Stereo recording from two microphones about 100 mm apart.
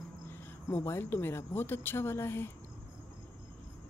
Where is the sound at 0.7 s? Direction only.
25° left (ahead or behind).